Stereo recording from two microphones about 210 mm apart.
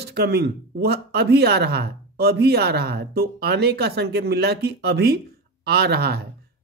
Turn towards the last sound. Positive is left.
turn(degrees=-50)  # may be behind; listen again after turning